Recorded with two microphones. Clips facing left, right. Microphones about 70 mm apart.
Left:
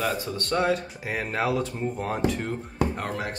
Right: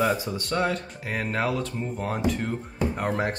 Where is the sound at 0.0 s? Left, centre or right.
Centre.